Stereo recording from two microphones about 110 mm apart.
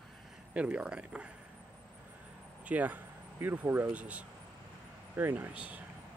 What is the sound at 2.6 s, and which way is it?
Speech, 15° right (ahead or behind).